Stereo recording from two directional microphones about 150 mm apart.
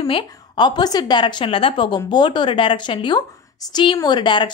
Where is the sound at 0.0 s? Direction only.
35° left (ahead or behind).